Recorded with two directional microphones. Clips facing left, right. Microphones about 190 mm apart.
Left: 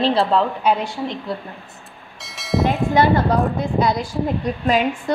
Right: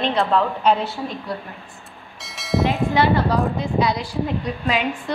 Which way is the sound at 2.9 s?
45° left (ahead or behind).